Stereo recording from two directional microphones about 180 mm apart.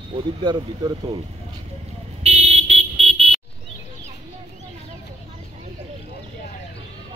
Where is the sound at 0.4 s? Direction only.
25° right (ahead or behind).